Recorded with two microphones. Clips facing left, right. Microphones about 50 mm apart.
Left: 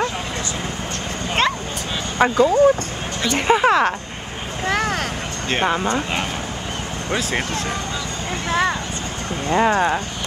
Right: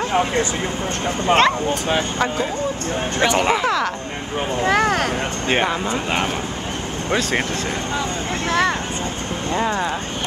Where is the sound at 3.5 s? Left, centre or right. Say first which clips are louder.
Left 4 dB; left.